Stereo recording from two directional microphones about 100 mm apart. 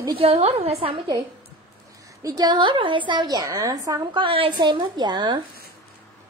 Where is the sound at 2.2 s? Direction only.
40° right (ahead or behind).